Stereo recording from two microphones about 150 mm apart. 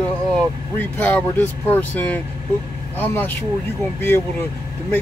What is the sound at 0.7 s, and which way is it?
Speech, 10° left (ahead or behind).